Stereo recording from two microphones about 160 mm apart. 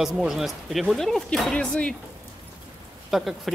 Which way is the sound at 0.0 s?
Centre (ahead or behind).